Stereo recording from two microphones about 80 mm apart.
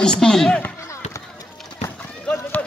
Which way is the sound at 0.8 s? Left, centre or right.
Left.